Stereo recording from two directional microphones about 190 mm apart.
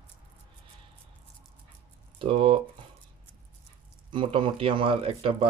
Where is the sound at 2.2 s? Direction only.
30° right (ahead or behind).